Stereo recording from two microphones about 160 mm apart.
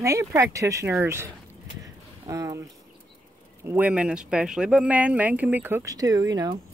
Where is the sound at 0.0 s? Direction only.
20° right (ahead or behind).